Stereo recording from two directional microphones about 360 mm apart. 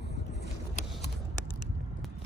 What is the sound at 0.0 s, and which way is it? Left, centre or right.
Vehicle, left.